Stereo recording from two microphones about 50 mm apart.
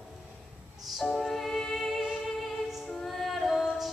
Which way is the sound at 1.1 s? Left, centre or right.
Centre.